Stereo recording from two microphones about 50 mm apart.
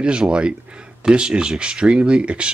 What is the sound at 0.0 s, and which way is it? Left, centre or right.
Speech, centre.